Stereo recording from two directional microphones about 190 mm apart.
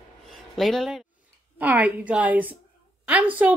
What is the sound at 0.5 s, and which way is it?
A woman's voice, centre (ahead or behind).